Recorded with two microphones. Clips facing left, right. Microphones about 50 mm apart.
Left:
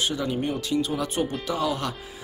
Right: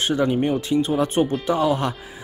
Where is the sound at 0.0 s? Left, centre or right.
Right.